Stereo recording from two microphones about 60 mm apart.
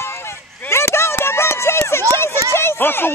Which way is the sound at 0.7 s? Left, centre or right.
Left.